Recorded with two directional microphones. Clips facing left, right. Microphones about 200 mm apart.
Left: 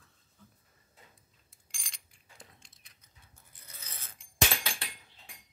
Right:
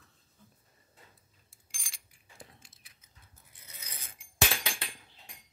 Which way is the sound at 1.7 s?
5° right (ahead or behind).